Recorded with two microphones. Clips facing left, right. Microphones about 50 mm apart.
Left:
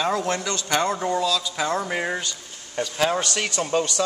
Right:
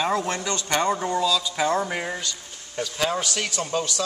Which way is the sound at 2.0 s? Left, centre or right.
Centre.